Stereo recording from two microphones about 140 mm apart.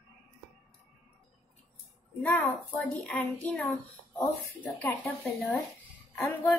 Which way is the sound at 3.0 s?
10° left (ahead or behind).